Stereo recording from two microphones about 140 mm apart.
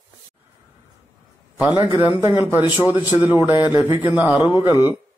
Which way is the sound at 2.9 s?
30° left (ahead or behind).